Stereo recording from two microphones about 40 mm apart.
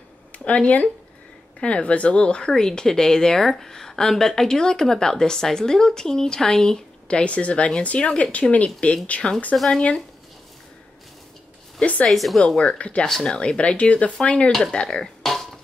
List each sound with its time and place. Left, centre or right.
0.5 s a woman's voice: left; by 6.8 s centre
7.1 s a woman's voice: left
9.5 s speech: left
11.8 s a woman's voice: left
12.1 s speech: centre
12.7 s a woman's voice: left
13.0 s speech: centre
13.3 s a woman's voice: left
14.7 s speech: centre